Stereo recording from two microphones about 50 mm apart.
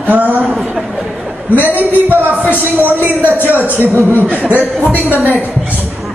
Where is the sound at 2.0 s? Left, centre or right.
Right.